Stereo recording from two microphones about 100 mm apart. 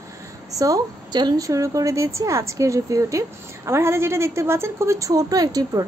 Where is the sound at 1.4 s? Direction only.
35° right (ahead or behind).